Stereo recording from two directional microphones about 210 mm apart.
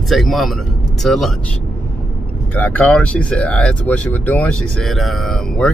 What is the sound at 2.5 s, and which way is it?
Speech, 10° left (ahead or behind).